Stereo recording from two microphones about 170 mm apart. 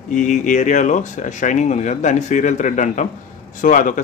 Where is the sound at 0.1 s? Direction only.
50° left (ahead or behind).